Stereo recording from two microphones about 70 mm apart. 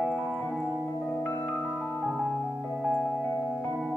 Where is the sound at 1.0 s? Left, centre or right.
Left.